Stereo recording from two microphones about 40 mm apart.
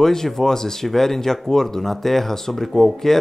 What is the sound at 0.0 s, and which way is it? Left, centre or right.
Speech, centre.